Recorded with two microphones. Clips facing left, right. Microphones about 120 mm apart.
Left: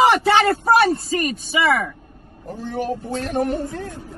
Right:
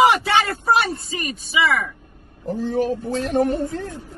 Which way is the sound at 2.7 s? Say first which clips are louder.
Right 3 dB; 30° right (ahead or behind).